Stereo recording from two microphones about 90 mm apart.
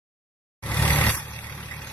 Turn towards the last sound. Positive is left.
turn(degrees=15)  # may be behind; listen again after turning